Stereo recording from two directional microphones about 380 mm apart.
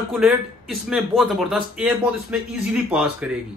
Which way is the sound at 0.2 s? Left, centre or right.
Centre.